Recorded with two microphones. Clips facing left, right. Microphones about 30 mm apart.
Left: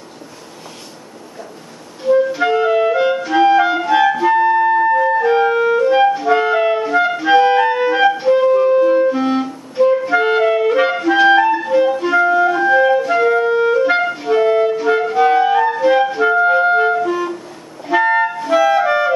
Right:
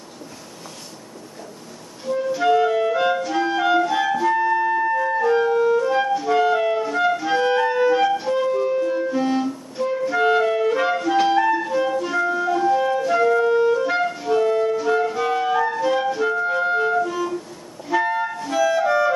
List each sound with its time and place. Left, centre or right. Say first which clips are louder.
2.0 s clarinet: left 6 dB; left